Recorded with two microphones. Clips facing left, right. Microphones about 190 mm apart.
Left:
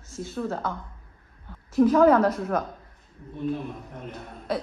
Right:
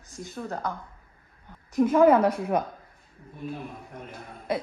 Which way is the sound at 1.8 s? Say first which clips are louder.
Left 1 dB; 5° right (ahead or behind).